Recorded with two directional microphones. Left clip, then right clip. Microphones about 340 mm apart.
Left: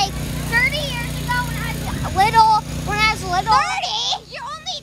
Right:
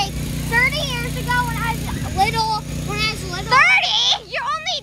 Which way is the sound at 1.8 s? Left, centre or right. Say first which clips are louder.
Left 6 dB; centre.